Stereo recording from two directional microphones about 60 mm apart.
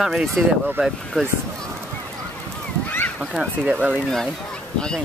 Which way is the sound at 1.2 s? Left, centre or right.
Centre.